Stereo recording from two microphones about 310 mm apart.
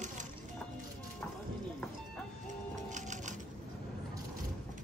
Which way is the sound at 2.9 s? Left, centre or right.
Right.